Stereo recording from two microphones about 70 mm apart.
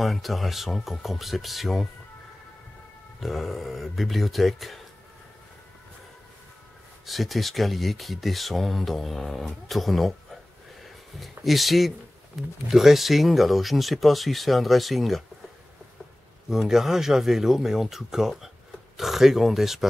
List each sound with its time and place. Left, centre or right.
0.0 s speech: centre
3.2 s speech: centre
7.1 s speech: centre
16.4 s speech: centre